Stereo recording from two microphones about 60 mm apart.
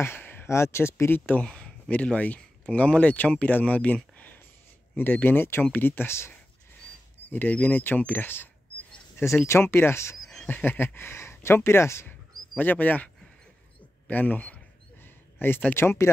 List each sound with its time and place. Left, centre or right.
0.0 s a sound: left
0.5 s speech: left
1.4 s speech: centre; by 6.3 s left
7.2 s speech: left
9.5 s speech: left
10.3 s a sound: left
10.6 s speech: left
12.5 s speech: left
15.4 s speech: left